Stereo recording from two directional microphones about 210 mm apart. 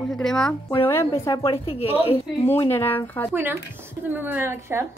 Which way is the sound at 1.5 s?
25° left (ahead or behind).